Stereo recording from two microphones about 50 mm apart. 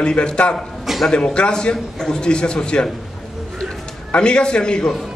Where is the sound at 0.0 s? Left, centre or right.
Centre.